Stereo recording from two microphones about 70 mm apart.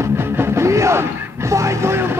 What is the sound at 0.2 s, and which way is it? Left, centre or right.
Music, right.